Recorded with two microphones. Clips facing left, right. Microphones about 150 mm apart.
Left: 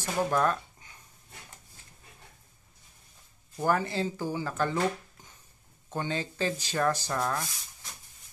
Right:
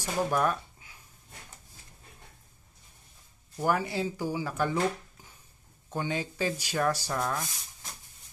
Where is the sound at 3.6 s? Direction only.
10° right (ahead or behind).